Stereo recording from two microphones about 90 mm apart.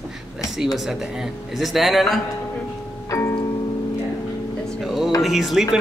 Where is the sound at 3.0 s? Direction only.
35° left (ahead or behind).